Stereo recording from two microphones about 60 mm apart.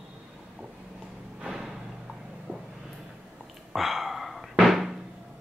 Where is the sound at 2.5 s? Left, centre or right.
Right.